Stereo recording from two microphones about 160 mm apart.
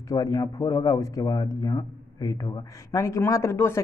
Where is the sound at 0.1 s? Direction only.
20° left (ahead or behind).